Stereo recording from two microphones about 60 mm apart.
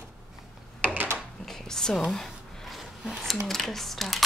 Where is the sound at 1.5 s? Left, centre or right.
Centre.